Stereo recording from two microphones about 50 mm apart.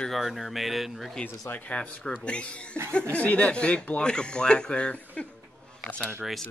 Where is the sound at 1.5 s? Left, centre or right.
Left.